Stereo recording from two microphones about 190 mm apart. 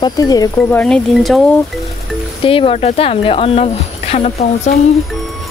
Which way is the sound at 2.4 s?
30° left (ahead or behind).